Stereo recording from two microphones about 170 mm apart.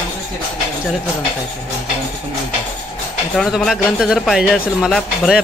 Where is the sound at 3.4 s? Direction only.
Centre (ahead or behind).